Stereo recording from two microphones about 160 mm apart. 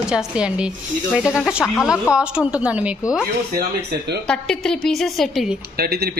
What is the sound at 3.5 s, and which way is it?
Speech, 70° right (ahead or behind).